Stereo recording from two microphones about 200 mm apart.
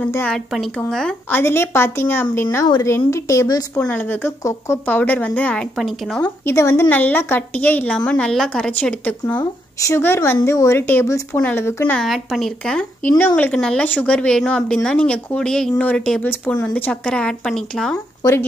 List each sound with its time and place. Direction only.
0.0 s a woman's voice: 5° left (ahead or behind)
9.4 s a woman's voice: 15° left (ahead or behind)